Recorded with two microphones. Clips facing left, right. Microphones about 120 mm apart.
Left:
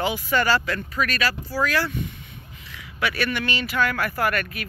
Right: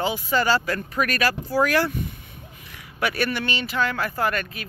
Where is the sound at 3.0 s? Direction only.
40° right (ahead or behind).